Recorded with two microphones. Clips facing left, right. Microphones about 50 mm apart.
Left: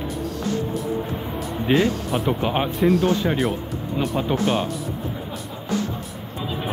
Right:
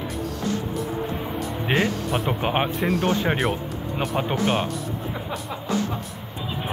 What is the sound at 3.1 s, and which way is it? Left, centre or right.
Speech, right.